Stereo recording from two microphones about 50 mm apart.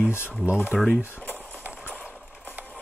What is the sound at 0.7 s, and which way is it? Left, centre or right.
Speech, centre.